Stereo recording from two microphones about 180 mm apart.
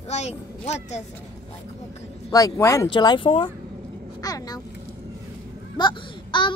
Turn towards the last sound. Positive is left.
turn(degrees=25)  # may be behind; listen again after turning